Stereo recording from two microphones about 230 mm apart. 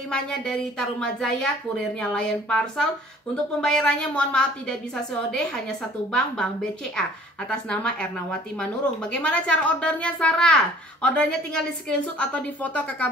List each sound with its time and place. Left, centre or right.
0.1 s speech: centre